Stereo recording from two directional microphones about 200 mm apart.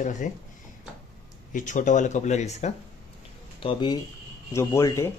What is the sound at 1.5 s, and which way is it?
Speech, 40° left (ahead or behind).